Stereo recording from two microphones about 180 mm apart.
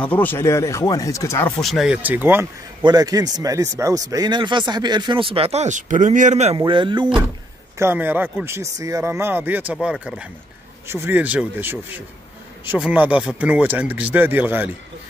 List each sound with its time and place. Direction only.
0.0 s speech: 10° left (ahead or behind)
1.6 s speech: centre (ahead or behind)
2.8 s speech: 20° right (ahead or behind); by 6.5 s 40° right (ahead or behind)
6.5 s speech: 25° right (ahead or behind)
7.8 s speech: 10° right (ahead or behind)